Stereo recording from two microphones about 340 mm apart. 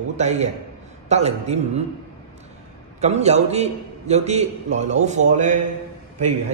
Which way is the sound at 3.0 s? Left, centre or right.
Centre.